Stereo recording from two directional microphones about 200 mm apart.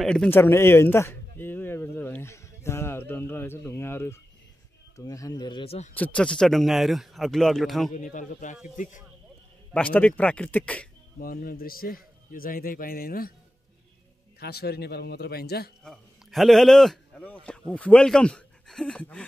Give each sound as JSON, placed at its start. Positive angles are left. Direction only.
{"t": 0.0, "sound": "speech", "side_deg": 5}
{"t": 5.9, "sound": "a man's voice", "side_deg": 5}
{"t": 7.9, "sound": "speech", "side_deg": 40}
{"t": 9.7, "sound": "speech", "side_deg": 5}
{"t": 11.1, "sound": "a man's voice", "side_deg": 45}
{"t": 14.4, "sound": "a man's voice", "side_deg": 55}
{"t": 15.8, "sound": "a man's voice", "side_deg": 0}